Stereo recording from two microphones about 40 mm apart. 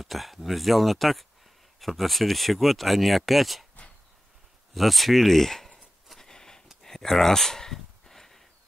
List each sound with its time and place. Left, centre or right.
0.0 s speech: centre
4.7 s speech: centre
6.1 s a sound: centre